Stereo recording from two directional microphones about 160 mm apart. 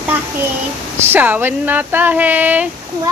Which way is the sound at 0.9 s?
15° right (ahead or behind).